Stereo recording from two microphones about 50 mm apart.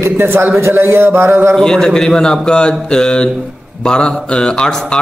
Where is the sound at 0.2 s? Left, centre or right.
Right.